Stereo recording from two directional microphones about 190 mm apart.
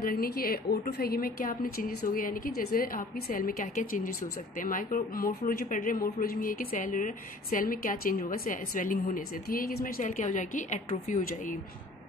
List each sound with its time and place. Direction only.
0.0 s speech: 50° left (ahead or behind)